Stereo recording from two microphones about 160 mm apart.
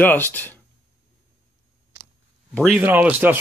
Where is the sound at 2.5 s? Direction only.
5° left (ahead or behind).